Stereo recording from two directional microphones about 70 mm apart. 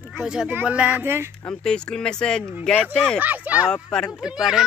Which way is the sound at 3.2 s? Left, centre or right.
Right.